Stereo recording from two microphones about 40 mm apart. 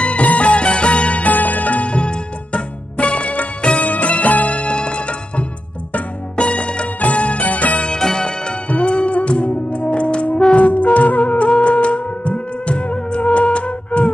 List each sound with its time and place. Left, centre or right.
0.0 s music: left
1.9 s music: left
7.8 s music: centre
10.6 s music: left